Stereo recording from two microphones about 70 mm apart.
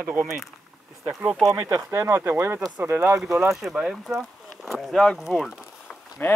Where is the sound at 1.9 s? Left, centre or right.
Right.